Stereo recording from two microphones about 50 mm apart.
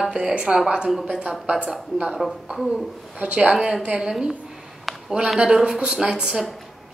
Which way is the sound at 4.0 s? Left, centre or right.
Centre.